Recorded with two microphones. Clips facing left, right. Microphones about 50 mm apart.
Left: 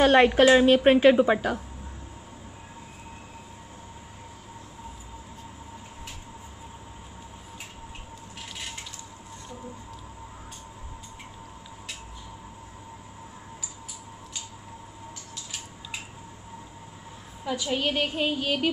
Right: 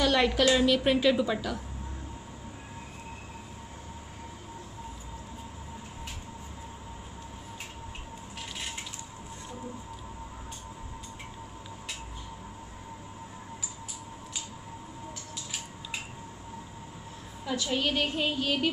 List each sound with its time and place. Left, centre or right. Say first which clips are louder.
0.0 s a woman's voice: left 7 dB; left
17.5 s a woman's voice: left 2 dB; centre